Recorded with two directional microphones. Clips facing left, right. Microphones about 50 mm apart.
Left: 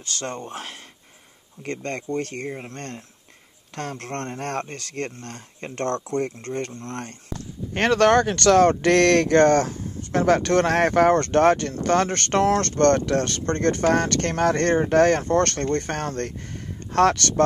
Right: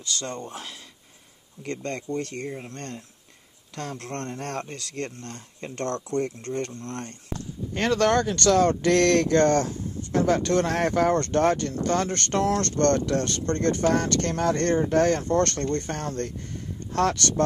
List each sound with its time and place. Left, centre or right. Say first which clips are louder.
0.0 s speech: left 1 dB; left
2.5 s speech: left 2 dB; left
3.7 s speech: left 3 dB; left
7.7 s speech: left 4 dB; left